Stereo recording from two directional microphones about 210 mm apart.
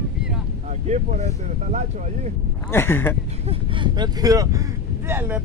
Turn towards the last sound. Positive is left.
turn(degrees=-15)  # may be behind; listen again after turning